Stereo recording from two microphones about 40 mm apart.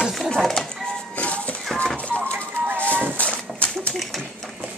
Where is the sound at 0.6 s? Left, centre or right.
Centre.